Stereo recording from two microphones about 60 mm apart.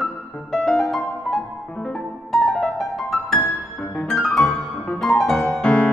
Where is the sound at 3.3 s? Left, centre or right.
Left.